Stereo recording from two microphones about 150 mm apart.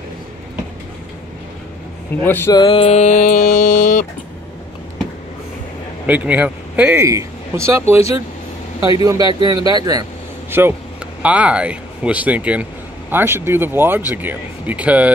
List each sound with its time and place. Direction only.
2.2 s a sound: 15° left (ahead or behind)
2.5 s mantra: 35° left (ahead or behind); by 4.0 s 55° left (ahead or behind)
6.0 s speech: 10° right (ahead or behind)
9.0 s speech: 25° right (ahead or behind)
10.5 s speech: 15° right (ahead or behind)